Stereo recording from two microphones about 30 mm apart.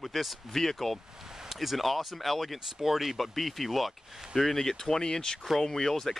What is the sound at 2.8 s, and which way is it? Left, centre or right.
Speech, centre.